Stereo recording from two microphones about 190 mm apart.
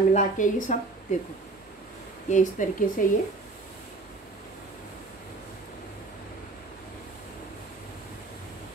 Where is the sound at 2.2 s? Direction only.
40° left (ahead or behind).